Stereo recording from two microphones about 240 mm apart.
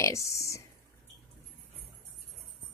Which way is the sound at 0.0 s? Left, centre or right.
Centre.